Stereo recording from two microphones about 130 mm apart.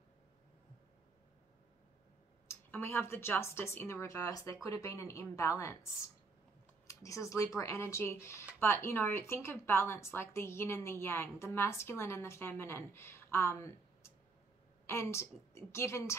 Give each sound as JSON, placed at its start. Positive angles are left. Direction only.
{"t": 2.4, "sound": "speech", "side_deg": 15}
{"t": 6.9, "sound": "speech", "side_deg": 25}